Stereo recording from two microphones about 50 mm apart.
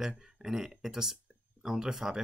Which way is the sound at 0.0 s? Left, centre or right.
Centre.